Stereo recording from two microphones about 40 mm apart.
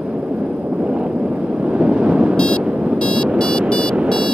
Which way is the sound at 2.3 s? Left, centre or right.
Left.